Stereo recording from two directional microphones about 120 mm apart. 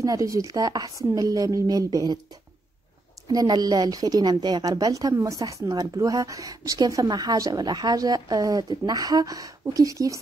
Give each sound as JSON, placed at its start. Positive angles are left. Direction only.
{"t": 0.0, "sound": "a woman's voice", "side_deg": -25}
{"t": 3.3, "sound": "a woman's voice", "side_deg": -35}